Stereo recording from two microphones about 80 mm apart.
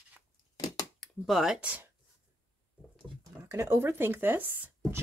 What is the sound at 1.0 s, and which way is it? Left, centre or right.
Speech, centre.